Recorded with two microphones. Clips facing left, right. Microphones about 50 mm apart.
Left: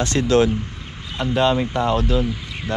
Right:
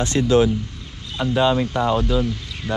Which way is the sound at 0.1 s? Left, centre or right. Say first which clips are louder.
Right 1 dB; left.